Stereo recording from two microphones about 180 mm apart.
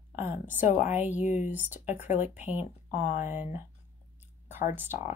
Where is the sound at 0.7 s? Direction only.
40° left (ahead or behind).